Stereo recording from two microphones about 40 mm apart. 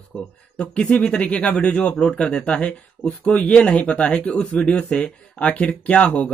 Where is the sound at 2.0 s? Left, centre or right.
Centre; by 6.3 s left.